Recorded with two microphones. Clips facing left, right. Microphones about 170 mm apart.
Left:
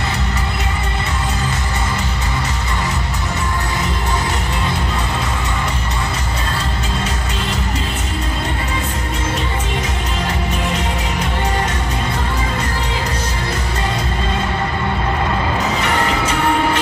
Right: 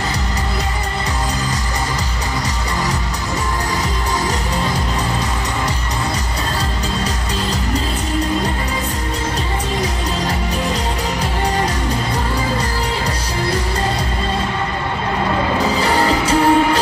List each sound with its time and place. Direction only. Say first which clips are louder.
15.8 s music: right 2 dB; 35° right (ahead or behind)